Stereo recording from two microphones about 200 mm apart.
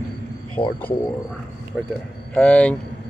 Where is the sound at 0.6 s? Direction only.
25° left (ahead or behind).